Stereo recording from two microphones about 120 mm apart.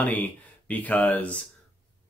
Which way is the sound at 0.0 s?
15° left (ahead or behind).